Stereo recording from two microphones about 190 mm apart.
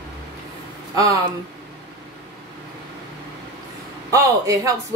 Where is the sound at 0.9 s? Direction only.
20° right (ahead or behind).